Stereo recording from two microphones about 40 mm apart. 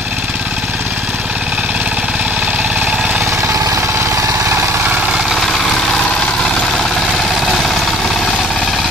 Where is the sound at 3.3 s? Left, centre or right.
Right.